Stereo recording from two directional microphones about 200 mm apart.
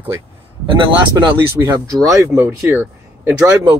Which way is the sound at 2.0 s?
10° right (ahead or behind).